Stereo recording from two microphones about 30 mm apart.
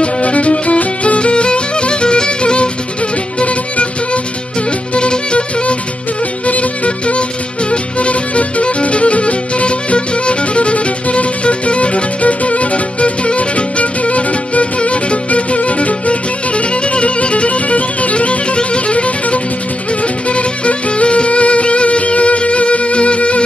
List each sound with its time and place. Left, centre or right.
0.0 s music: left
6.4 s music: left